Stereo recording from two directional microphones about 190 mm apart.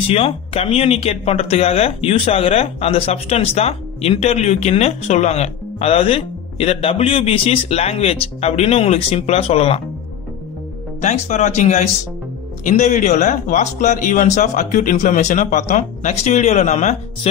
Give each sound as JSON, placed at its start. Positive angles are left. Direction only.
{"t": 0.1, "sound": "speech", "side_deg": 30}
{"t": 11.0, "sound": "speech", "side_deg": 35}